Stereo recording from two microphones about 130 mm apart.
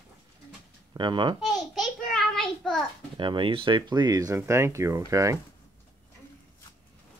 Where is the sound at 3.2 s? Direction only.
40° right (ahead or behind).